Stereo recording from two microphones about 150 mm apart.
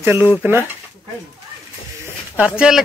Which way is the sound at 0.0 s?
15° right (ahead or behind).